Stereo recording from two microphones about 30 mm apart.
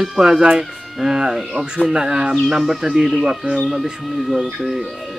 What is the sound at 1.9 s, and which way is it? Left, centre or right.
Speech, right.